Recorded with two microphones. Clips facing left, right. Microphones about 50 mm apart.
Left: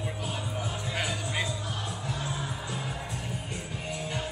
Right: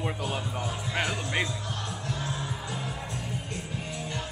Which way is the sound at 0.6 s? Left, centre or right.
Centre.